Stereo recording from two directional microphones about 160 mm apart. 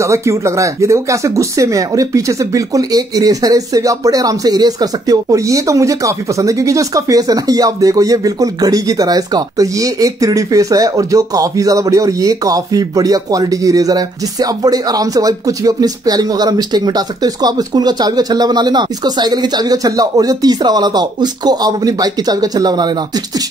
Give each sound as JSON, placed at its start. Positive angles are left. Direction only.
{"t": 0.0, "sound": "speech", "side_deg": -15}